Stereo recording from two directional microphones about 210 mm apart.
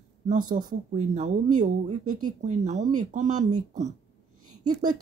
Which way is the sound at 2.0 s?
90° right.